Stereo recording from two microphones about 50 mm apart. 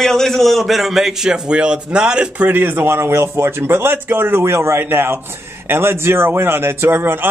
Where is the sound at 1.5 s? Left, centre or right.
Right.